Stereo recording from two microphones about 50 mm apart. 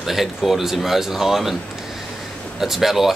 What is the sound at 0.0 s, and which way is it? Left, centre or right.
Speech, centre.